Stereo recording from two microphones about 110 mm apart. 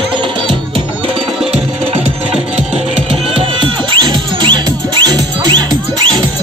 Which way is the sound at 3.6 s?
45° right (ahead or behind).